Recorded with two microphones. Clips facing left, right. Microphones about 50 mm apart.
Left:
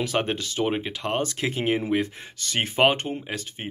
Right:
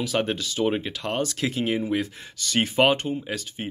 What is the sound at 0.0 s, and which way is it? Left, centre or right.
Speech, left.